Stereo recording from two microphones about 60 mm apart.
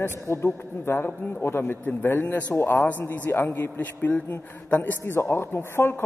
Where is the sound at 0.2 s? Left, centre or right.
Left.